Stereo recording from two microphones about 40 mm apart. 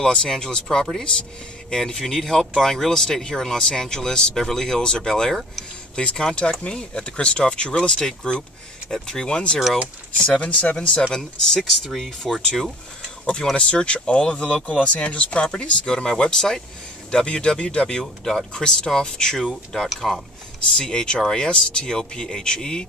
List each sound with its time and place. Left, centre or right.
0.0 s speech: centre
6.6 s speech: left
11.1 s speech: centre
18.0 s speech: centre; by 21.8 s left
21.8 s speech: centre